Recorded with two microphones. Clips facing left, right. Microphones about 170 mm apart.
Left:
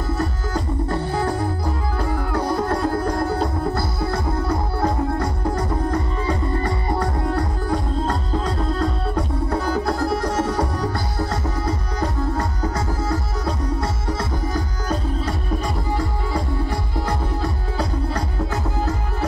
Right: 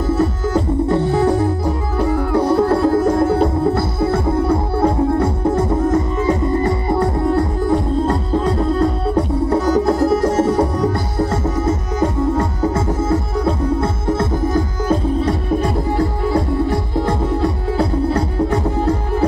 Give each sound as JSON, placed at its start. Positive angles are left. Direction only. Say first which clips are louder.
{"t": 0.2, "sound": "music", "louder": "right 8 dB", "side_deg": -25}
{"t": 9.1, "sound": "music", "louder": "right 7 dB", "side_deg": -25}
{"t": 14.0, "sound": "music", "louder": "right 7 dB", "side_deg": -50}
{"t": 16.9, "sound": "music", "louder": "right 7 dB", "side_deg": -25}